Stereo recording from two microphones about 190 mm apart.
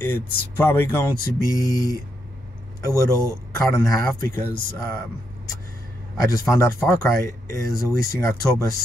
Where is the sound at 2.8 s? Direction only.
15° left (ahead or behind).